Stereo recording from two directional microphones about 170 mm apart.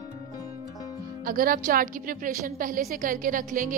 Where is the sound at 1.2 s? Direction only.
55° right (ahead or behind).